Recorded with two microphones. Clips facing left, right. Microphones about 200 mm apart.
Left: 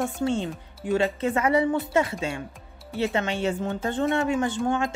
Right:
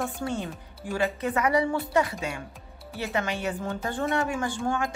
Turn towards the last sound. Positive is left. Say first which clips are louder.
# left 3 dB
turn(degrees=20)  # may be behind; listen again after turning